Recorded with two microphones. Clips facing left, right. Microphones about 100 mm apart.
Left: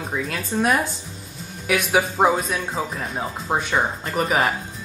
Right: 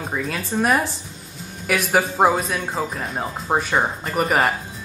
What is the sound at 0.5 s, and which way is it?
Speech, 15° right (ahead or behind).